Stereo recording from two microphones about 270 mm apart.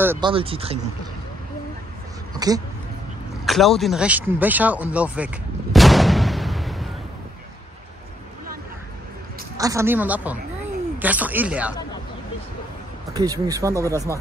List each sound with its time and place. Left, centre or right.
0.0 s speech: centre
0.3 s speech: right
2.3 s speech: centre
3.4 s speech: centre
9.6 s speech: centre
13.1 s speech: centre